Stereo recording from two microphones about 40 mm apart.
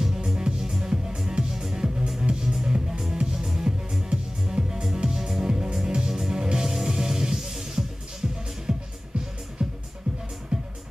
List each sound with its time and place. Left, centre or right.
0.0 s music: centre
4.1 s music: centre